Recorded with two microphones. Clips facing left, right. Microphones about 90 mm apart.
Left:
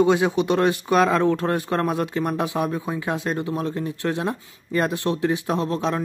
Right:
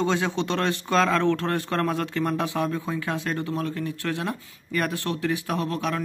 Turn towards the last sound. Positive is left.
turn(degrees=25)  # may be behind; listen again after turning